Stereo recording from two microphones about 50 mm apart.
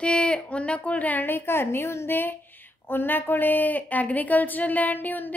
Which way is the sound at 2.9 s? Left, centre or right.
Left.